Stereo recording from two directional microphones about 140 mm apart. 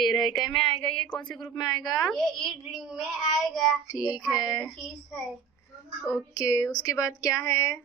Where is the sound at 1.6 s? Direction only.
30° left (ahead or behind).